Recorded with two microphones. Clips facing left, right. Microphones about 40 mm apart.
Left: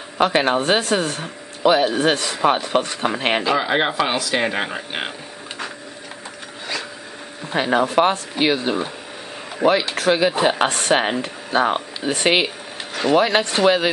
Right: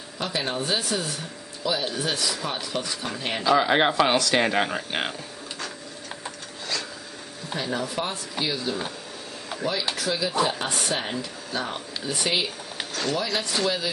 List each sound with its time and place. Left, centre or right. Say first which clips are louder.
0.2 s speech: left 11 dB; left
3.5 s speech: left 1 dB; centre
7.5 s speech: left 11 dB; left